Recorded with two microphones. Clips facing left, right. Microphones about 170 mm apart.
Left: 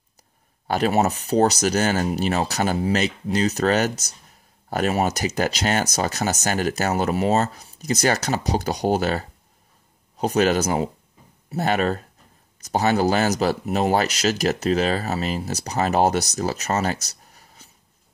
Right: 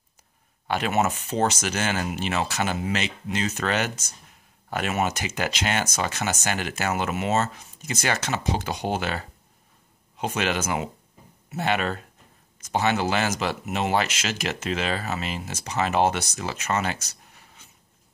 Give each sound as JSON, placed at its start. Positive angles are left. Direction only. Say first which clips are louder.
{"t": 0.7, "sound": "speech", "louder": "left 4 dB", "side_deg": 35}